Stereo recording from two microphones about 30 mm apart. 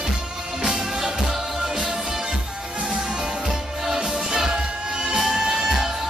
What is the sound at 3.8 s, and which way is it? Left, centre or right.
Music, right.